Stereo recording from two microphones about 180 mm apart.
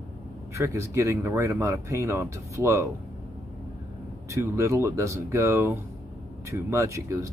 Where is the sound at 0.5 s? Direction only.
15° right (ahead or behind).